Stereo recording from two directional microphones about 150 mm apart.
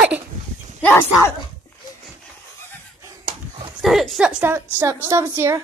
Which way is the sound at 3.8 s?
Centre (ahead or behind).